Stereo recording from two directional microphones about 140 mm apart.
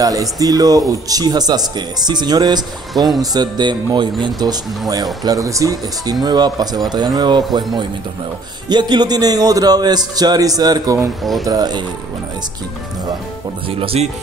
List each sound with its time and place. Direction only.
0.0 s speech: 25° right (ahead or behind)
2.9 s speech: centre (ahead or behind)
3.2 s speech: 30° right (ahead or behind)
8.6 s speech: 30° right (ahead or behind)
13.7 s speech: 40° right (ahead or behind)